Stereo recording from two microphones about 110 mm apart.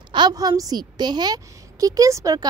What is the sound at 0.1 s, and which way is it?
Speech, 40° right (ahead or behind).